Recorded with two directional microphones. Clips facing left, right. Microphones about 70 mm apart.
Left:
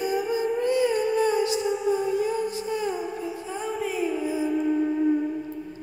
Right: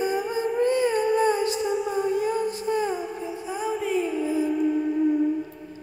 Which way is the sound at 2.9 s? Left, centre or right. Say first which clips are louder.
Even; centre.